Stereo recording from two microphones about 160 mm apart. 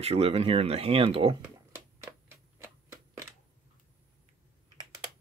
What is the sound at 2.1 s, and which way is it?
Shuffling cards, 15° right (ahead or behind).